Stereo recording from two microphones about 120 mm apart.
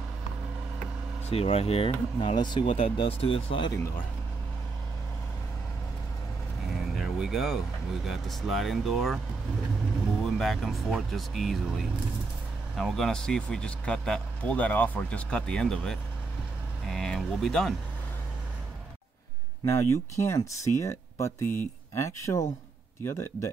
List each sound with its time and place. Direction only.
1.3 s speech: 55° left (ahead or behind)
2.3 s speech: 40° left (ahead or behind)
2.6 s speech: 50° left (ahead or behind)
7.0 s speech: 5° right (ahead or behind)
10.2 s speech: centre (ahead or behind)
16.8 s a sound: 5° left (ahead or behind)
19.6 s speech: 25° left (ahead or behind)